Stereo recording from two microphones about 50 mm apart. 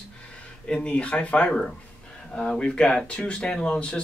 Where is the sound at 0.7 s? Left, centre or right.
Left.